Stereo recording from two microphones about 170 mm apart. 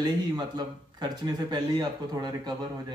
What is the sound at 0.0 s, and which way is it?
Speech, 25° right (ahead or behind).